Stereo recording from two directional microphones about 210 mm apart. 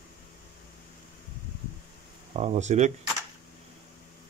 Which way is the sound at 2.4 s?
35° right (ahead or behind).